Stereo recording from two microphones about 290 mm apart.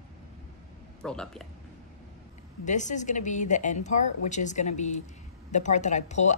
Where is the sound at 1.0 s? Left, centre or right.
Centre.